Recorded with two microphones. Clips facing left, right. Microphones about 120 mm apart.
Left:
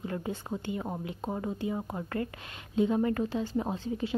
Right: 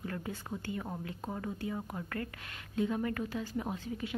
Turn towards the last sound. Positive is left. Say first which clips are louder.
# left 5 dB
turn(degrees=30)  # may be behind; listen again after turning